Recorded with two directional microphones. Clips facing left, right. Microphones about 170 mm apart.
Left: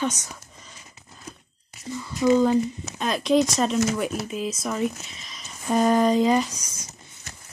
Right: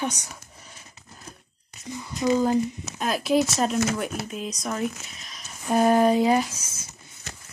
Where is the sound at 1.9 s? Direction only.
15° right (ahead or behind).